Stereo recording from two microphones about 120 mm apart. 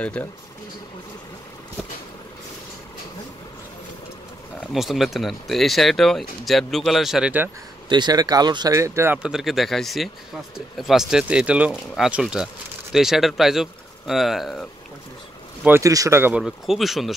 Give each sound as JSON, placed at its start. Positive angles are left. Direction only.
{"t": 0.0, "sound": "speech", "side_deg": 10}
{"t": 4.7, "sound": "speech", "side_deg": 0}
{"t": 7.9, "sound": "speech", "side_deg": -35}
{"t": 9.2, "sound": "speech", "side_deg": -5}
{"t": 15.6, "sound": "speech", "side_deg": -25}
{"t": 16.3, "sound": "speech", "side_deg": -5}